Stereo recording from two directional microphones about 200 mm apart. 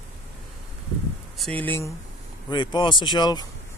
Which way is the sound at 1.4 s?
5° left (ahead or behind).